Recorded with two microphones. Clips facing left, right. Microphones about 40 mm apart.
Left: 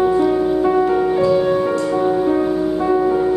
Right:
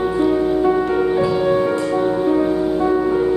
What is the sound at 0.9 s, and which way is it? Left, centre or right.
Music, centre.